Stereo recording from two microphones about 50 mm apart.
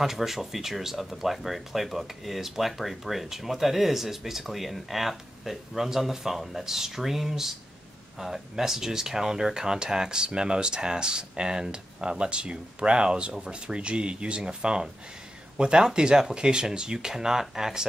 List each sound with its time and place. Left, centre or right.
0.0 s speech: centre